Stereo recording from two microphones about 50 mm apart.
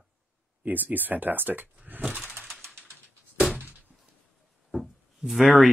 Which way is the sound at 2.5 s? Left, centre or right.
Centre.